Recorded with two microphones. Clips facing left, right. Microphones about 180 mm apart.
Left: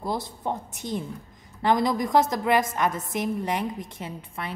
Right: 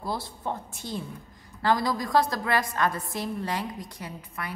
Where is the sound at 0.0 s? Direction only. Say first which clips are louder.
Left 3 dB; 20° left (ahead or behind).